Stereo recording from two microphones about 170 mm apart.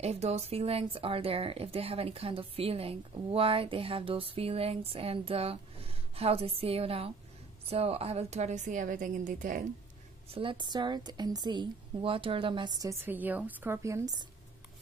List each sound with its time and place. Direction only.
0.0 s a woman's voice: 40° right (ahead or behind)
10.3 s a woman's voice: 30° right (ahead or behind)